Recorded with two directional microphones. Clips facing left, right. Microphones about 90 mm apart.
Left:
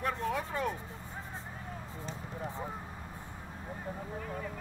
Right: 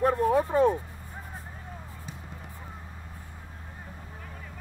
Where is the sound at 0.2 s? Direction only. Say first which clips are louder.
Right 11 dB; 25° right (ahead or behind).